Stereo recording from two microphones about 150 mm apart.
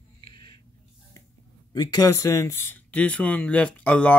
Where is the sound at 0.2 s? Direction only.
30° left (ahead or behind).